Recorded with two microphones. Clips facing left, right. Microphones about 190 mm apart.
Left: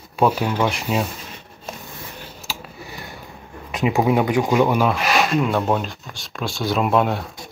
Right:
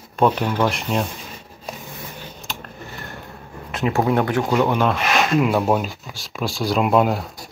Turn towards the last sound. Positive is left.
turn(degrees=0)  # may be behind; listen again after turning